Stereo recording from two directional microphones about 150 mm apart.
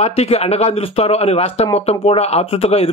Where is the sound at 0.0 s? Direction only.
45° left (ahead or behind).